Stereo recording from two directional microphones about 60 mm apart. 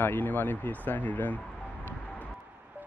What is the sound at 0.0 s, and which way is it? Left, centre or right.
Speech, left.